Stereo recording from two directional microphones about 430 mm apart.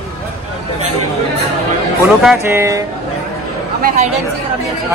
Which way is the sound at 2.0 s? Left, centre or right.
Centre.